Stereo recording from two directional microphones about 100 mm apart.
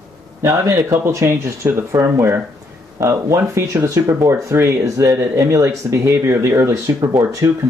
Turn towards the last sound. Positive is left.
turn(degrees=-35)  # may be behind; listen again after turning